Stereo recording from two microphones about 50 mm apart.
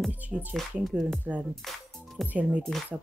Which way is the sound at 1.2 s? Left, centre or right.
Right.